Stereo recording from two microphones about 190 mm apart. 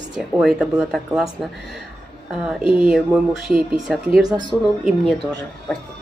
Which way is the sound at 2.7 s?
5° right (ahead or behind).